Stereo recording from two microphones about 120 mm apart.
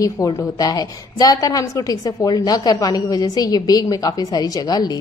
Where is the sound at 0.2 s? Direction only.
30° left (ahead or behind).